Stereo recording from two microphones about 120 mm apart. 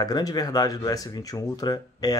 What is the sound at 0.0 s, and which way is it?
Speech, 35° left (ahead or behind).